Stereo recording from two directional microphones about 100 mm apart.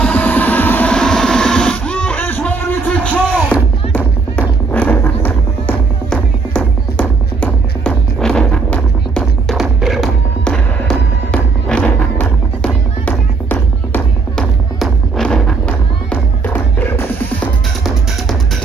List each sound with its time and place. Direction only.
0.0 s music: 15° left (ahead or behind)
9.6 s music: centre (ahead or behind); by 14.0 s 15° left (ahead or behind)
14.3 s music: 5° left (ahead or behind)